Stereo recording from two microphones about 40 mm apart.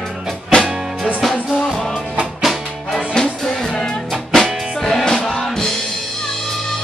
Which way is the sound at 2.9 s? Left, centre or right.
Centre.